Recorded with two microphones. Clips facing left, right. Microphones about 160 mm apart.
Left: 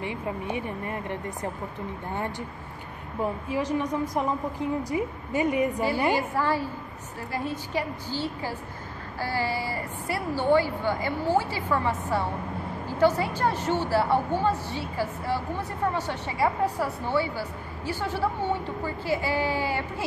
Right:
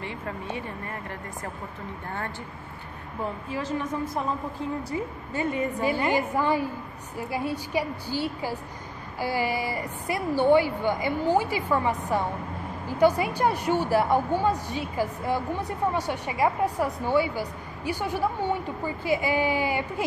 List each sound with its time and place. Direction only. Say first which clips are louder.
0.0 s a woman's voice: left 3 dB; 15° left (ahead or behind)
3.4 s a woman's voice: left 2 dB; 15° left (ahead or behind)
6.1 s a woman's voice: right 2 dB; 15° right (ahead or behind)